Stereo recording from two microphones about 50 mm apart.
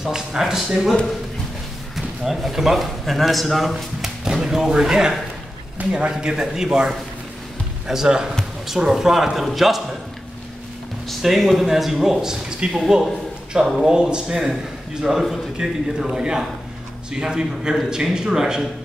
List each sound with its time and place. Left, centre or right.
0.0 s a man's voice: centre
2.0 s a man's voice: centre
4.2 s a man's voice: centre
11.1 s a man's voice: centre
13.7 s a man's voice: centre
13.9 s a man's voice: centre
15.0 s a man's voice: centre